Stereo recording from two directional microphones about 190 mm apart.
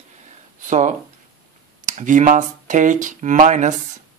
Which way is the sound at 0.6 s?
40° right (ahead or behind).